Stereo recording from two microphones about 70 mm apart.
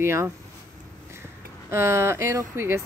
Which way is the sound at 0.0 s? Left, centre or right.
Right.